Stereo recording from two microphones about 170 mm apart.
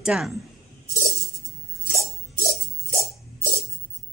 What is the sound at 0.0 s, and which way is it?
Speech, 5° right (ahead or behind).